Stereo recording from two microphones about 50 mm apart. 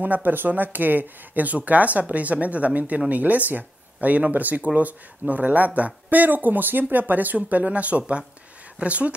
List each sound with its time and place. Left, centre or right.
0.0 s speech: right